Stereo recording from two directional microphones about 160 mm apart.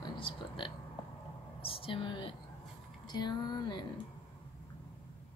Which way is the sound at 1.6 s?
35° left (ahead or behind).